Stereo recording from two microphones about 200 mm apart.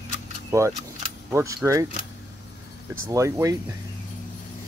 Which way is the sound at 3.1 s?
15° right (ahead or behind).